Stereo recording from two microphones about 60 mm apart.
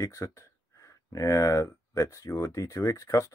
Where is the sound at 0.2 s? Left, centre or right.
Left.